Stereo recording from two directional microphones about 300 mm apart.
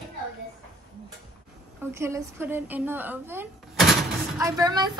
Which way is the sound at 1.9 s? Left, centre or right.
Centre.